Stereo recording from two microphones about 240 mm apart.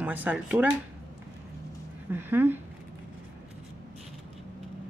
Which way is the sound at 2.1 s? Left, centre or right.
Centre.